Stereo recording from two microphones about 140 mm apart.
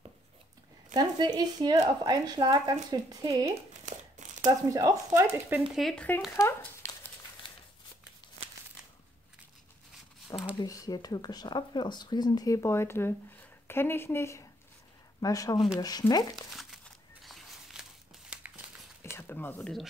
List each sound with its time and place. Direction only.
0.9 s speech: 30° right (ahead or behind)
5.7 s speech: centre (ahead or behind)
6.4 s a sound: 20° left (ahead or behind)
10.3 s speech: 30° left (ahead or behind)
16.5 s a sound: centre (ahead or behind)
19.0 s speech: 15° left (ahead or behind)